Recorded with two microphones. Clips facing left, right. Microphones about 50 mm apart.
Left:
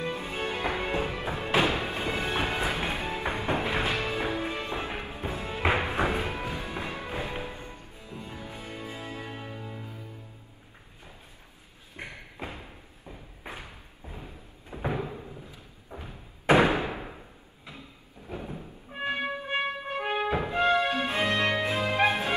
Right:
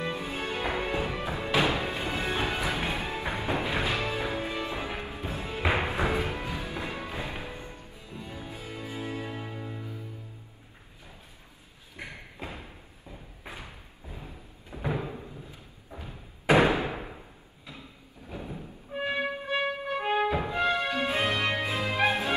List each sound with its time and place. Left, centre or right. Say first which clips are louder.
0.1 s music: left 1 dB; left
12.0 s thump: left 1 dB; left
14.0 s a sound: left 1 dB; left
16.0 s thump: even; left
16.7 s a sound: even; left
19.0 s music: even; left